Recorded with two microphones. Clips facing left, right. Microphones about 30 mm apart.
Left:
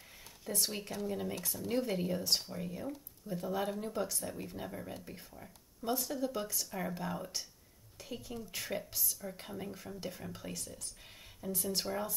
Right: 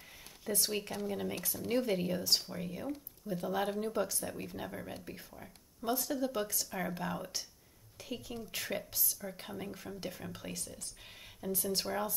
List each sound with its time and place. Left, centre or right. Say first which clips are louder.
0.5 s speech: right 2 dB; centre
2.5 s speech: right 1 dB; centre
5.9 s speech: right 2 dB; centre
6.2 s speech: right 1 dB; centre